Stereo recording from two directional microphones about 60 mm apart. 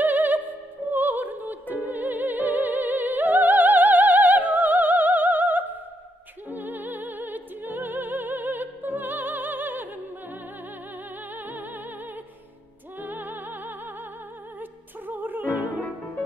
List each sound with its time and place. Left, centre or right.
0.0 s music: right
11.3 s music: right
13.0 s music: right